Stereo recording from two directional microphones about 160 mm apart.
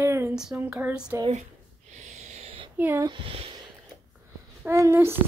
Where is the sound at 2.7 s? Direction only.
15° right (ahead or behind).